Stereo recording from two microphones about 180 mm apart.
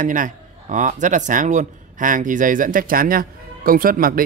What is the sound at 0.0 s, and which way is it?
Speech, 45° right (ahead or behind).